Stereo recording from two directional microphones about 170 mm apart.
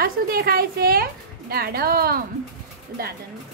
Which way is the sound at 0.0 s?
60° right (ahead or behind).